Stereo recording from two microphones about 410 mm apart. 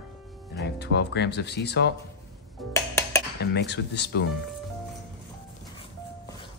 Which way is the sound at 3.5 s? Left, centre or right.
Left.